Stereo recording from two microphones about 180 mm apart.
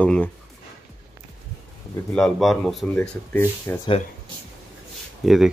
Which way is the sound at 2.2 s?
Centre (ahead or behind).